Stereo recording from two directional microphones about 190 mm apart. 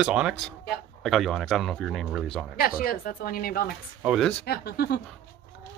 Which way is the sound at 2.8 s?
50° left (ahead or behind).